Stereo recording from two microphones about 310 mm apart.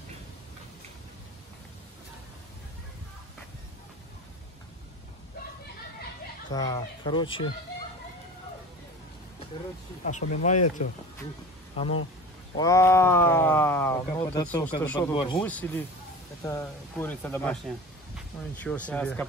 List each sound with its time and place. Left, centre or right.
6.5 s speech: centre
10.0 s speech: left
12.5 s speech: centre